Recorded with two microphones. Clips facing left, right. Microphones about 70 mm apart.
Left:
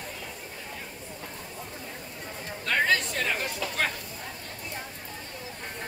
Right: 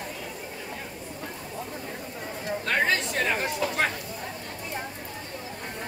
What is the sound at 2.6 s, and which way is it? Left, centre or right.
Chatter, right.